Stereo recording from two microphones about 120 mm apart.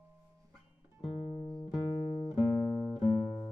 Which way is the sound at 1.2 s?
45° left (ahead or behind).